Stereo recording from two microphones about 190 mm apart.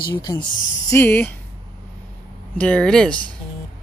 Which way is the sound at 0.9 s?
10° left (ahead or behind).